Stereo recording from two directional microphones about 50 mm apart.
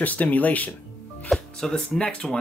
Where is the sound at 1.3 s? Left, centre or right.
Centre.